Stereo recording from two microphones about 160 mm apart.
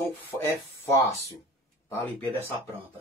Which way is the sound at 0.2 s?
15° left (ahead or behind).